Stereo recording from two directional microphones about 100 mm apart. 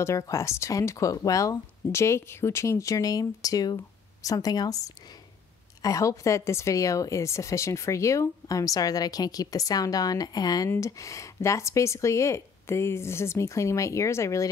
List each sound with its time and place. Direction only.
0.0 s speech: 30° left (ahead or behind)